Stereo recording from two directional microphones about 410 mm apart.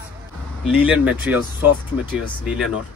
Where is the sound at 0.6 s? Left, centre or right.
Centre.